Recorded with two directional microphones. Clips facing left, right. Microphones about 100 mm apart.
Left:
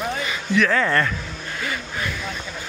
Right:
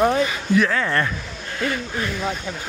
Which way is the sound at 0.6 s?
5° right (ahead or behind).